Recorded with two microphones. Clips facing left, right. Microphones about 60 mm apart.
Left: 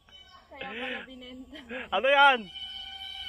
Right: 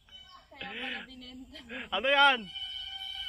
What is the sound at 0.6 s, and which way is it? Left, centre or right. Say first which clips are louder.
Speech: left 3 dB; centre.